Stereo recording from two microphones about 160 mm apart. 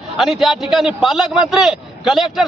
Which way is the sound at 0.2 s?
Centre (ahead or behind).